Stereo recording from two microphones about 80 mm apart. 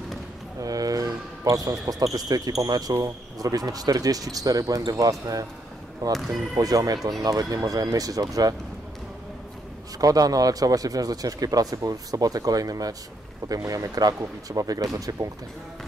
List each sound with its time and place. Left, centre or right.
0.6 s basketball bounce: right
2.6 s speech: right
9.9 s speech: right